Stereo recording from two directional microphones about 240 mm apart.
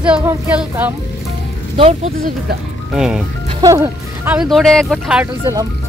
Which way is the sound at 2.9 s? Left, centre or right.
Centre.